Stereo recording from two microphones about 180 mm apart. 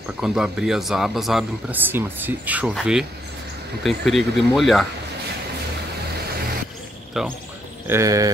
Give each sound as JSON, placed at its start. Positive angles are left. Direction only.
{"t": 0.2, "sound": "speech", "side_deg": -5}
{"t": 7.2, "sound": "speech", "side_deg": 0}
{"t": 7.9, "sound": "a sound", "side_deg": -20}